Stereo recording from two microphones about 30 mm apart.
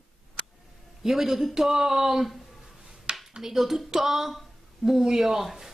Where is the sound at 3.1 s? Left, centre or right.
Right.